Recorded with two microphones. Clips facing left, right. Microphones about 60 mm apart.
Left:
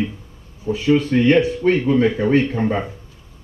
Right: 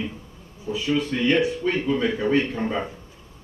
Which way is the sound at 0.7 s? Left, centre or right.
Left.